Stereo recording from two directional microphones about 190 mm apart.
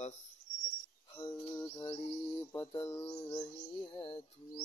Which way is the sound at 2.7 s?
25° left (ahead or behind).